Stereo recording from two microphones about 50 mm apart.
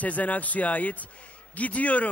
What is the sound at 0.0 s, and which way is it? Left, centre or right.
Speech, left.